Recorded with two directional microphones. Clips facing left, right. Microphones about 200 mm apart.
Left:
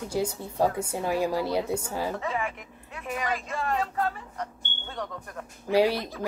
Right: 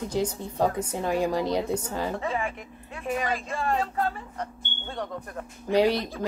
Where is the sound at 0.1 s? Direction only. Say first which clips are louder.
Left 1 dB; 10° left (ahead or behind).